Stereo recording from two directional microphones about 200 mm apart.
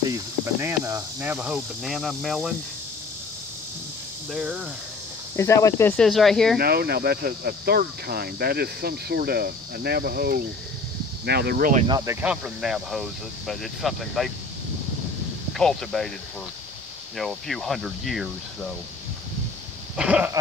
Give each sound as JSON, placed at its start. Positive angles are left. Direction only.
{"t": 0.0, "sound": "speech", "side_deg": -15}
{"t": 4.3, "sound": "speech", "side_deg": -5}
{"t": 5.3, "sound": "speech", "side_deg": 15}
{"t": 6.6, "sound": "speech", "side_deg": -50}
{"t": 11.9, "sound": "speech", "side_deg": -15}
{"t": 15.5, "sound": "speech", "side_deg": 0}
{"t": 17.2, "sound": "speech", "side_deg": 0}
{"t": 20.0, "sound": "speech", "side_deg": -5}